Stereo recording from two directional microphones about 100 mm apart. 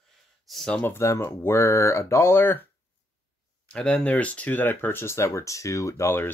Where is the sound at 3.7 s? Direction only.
15° left (ahead or behind).